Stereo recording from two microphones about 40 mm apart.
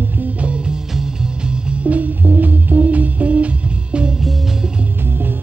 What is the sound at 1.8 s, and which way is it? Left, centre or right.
Music, right.